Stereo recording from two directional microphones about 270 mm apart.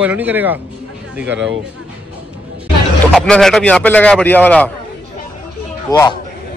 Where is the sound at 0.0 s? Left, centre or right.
Centre.